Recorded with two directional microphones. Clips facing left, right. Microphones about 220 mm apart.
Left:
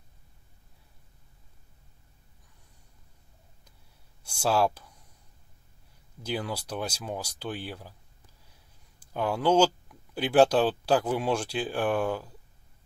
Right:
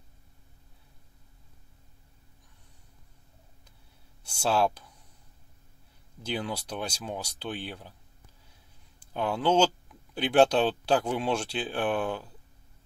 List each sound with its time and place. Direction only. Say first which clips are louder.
4.2 s speech: left 1 dB; 10° left (ahead or behind)
6.2 s speech: even; 10° left (ahead or behind)
9.1 s speech: left 1 dB; 10° left (ahead or behind)